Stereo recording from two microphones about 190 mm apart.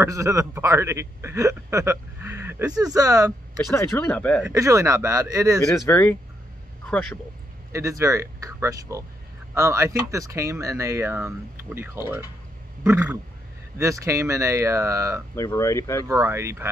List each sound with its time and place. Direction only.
0.0 s speech: 15° right (ahead or behind)
3.7 s speech: 15° left (ahead or behind)
4.6 s speech: 15° right (ahead or behind)
5.9 s speech: 10° left (ahead or behind)
7.7 s speech: 15° right (ahead or behind)
15.3 s speech: 15° left (ahead or behind)
16.1 s speech: 15° right (ahead or behind)